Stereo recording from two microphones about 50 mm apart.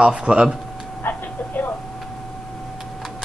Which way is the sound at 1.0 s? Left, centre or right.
Left.